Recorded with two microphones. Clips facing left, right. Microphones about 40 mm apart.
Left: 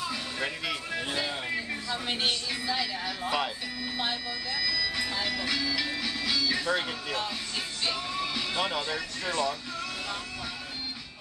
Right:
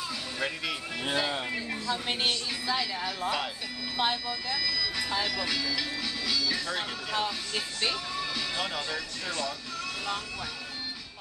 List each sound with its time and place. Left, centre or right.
0.4 s speech: centre
1.0 s speech: centre
1.7 s speech: centre
7.9 s speech: centre